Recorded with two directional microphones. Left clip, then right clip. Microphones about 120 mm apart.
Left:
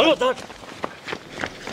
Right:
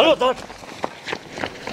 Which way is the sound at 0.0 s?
60° left (ahead or behind).